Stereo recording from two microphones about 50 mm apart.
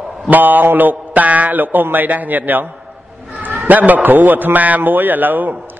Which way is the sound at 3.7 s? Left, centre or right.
Right.